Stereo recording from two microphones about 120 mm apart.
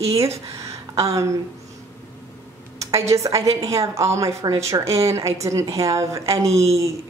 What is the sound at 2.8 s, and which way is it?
A woman's voice, 25° right (ahead or behind).